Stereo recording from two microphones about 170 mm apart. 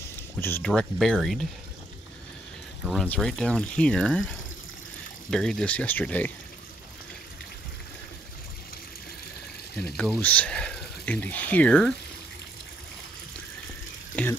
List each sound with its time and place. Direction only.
0.4 s speech: 10° left (ahead or behind)
2.8 s speech: centre (ahead or behind)
9.8 s speech: 5° left (ahead or behind)